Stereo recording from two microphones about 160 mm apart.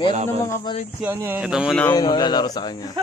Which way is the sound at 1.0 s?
10° right (ahead or behind).